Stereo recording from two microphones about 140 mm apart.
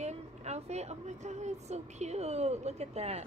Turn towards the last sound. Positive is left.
turn(degrees=-50)  # may be behind; listen again after turning